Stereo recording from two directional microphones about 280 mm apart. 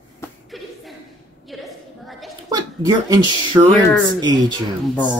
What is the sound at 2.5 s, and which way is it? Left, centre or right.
Speech, centre.